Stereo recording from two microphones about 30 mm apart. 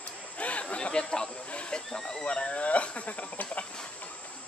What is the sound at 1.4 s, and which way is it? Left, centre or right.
Speech, left.